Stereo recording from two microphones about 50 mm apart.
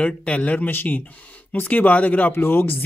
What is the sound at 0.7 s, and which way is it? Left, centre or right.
Speech, left.